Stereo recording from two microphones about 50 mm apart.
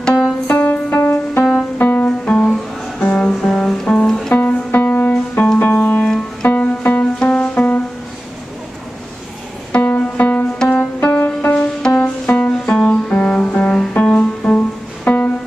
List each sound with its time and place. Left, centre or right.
0.0 s music: centre
0.5 s music: left
1.5 s music: left
2.0 s music: centre
4.3 s music: left
9.8 s music: left
12.5 s music: centre
15.0 s music: left